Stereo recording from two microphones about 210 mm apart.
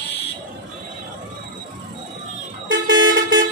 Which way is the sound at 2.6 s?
65° right (ahead or behind).